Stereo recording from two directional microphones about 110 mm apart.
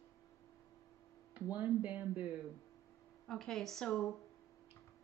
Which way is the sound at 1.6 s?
15° right (ahead or behind).